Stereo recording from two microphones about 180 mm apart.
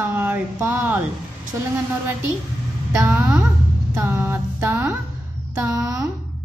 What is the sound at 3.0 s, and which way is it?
Music, 10° right (ahead or behind).